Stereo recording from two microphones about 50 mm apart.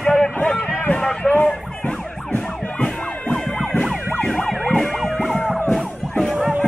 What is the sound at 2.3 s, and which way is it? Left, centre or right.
Emergency vehicle, left.